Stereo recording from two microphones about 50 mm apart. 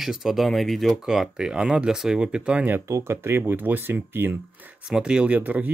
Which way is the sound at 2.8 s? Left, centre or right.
Right.